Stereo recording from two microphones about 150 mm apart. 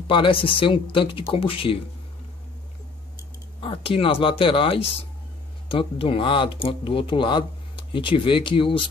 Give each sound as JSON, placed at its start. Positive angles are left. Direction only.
{"t": 0.1, "sound": "speech", "side_deg": 35}
{"t": 3.6, "sound": "speech", "side_deg": 40}